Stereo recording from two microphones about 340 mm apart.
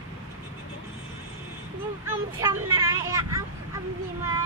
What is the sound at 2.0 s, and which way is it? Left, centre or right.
Vehicle, centre.